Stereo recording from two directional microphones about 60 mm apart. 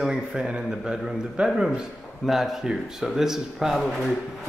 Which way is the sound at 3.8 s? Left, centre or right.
Centre.